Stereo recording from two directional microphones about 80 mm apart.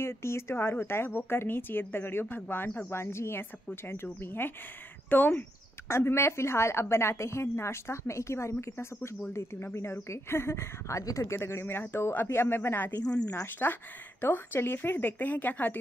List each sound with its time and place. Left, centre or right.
0.0 s a woman's voice: left